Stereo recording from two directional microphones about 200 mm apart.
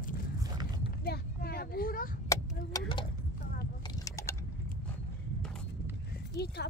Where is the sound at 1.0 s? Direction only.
50° left (ahead or behind).